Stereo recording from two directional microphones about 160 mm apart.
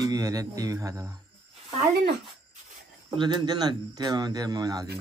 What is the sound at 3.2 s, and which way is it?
Speech, 30° right (ahead or behind).